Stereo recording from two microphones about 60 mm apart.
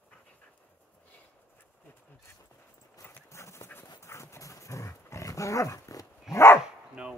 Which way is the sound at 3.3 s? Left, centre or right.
Left.